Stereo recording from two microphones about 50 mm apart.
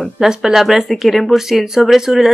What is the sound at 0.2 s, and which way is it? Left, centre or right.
Speech, centre.